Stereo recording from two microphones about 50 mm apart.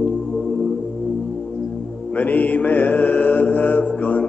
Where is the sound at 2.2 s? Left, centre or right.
Left.